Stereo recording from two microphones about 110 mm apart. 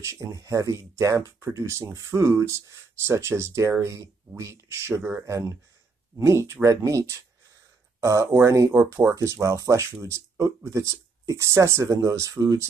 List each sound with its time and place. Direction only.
0.0 s speech: 25° right (ahead or behind)